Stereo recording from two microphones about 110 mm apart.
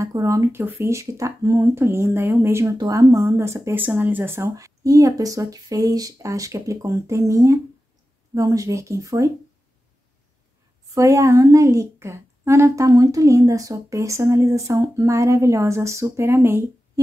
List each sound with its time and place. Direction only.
0.0 s a woman's voice: 30° right (ahead or behind)
11.0 s a woman's voice: 30° right (ahead or behind)